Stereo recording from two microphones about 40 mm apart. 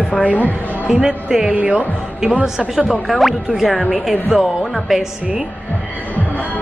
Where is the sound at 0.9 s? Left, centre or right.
Centre.